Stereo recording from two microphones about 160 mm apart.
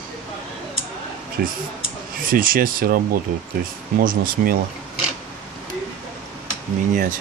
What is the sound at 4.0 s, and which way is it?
Speech, 65° right (ahead or behind).